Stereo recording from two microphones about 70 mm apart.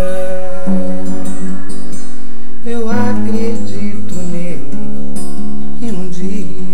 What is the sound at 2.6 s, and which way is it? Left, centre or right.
Music, centre.